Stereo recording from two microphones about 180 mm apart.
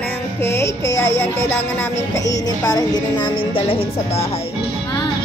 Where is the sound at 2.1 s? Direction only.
20° left (ahead or behind).